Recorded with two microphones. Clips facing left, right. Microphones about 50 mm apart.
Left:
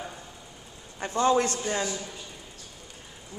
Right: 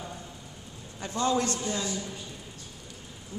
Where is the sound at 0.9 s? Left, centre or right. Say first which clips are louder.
Left 4 dB; left.